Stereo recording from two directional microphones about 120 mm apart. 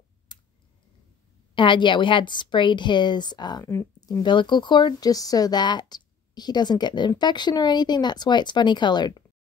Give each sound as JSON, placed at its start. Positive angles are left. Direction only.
{"t": 0.3, "sound": "clicking", "side_deg": 40}
{"t": 1.5, "sound": "speech", "side_deg": 40}